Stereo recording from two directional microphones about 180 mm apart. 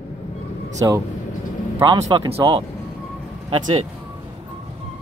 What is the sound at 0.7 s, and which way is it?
Speech, 20° right (ahead or behind).